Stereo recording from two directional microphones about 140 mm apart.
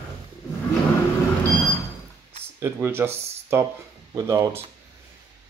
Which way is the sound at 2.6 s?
15° right (ahead or behind).